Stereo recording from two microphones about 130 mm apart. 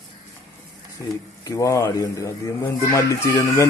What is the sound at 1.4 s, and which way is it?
Speech, 25° left (ahead or behind).